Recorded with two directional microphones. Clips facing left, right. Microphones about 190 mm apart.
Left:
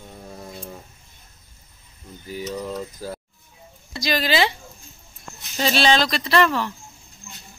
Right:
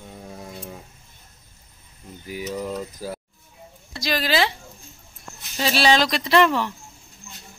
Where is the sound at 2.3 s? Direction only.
10° right (ahead or behind).